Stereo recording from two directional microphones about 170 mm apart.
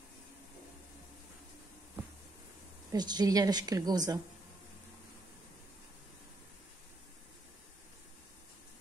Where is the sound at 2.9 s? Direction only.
25° right (ahead or behind).